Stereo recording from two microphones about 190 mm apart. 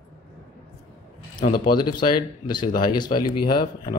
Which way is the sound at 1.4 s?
50° left (ahead or behind).